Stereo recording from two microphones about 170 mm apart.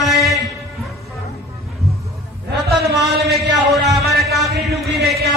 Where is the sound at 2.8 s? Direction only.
Centre (ahead or behind).